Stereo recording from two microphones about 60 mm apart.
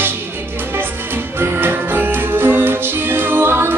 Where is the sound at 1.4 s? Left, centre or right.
Right.